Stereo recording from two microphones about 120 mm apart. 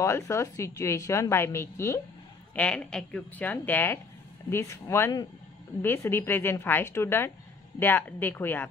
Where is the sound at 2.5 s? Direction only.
10° left (ahead or behind).